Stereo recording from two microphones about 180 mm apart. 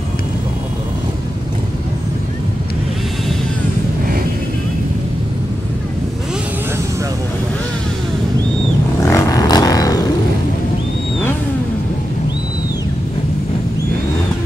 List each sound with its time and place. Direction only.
9.0 s vehicle: 20° left (ahead or behind)